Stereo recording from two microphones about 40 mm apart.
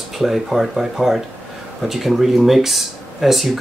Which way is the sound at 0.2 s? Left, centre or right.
Centre.